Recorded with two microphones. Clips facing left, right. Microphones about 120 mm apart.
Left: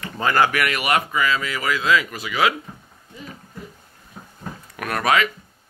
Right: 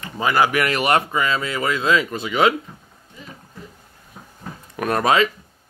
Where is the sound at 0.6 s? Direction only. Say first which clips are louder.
Right 3 dB; 30° right (ahead or behind).